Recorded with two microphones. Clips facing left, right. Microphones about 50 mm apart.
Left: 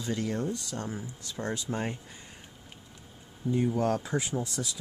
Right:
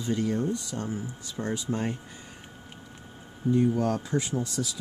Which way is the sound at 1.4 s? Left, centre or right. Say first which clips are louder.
Right 2 dB; centre.